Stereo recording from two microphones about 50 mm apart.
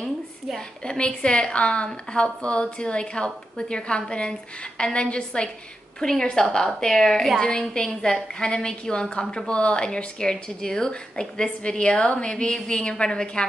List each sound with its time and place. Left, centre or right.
0.8 s a woman's voice: centre